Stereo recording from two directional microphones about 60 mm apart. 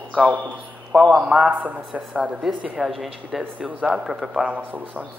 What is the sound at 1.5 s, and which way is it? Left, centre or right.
Speech, right.